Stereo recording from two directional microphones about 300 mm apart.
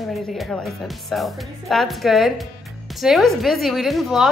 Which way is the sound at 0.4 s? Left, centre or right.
Centre.